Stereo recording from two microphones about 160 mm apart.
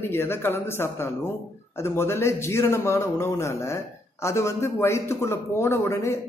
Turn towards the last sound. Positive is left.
turn(degrees=15)  # may be behind; listen again after turning